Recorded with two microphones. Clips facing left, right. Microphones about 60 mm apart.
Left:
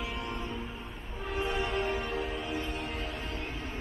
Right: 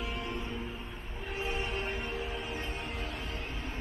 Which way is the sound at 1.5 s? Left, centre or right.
Left.